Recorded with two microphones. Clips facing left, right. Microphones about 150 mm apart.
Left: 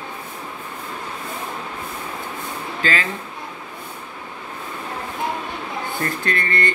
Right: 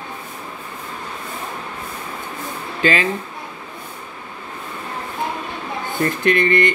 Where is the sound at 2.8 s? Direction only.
20° right (ahead or behind).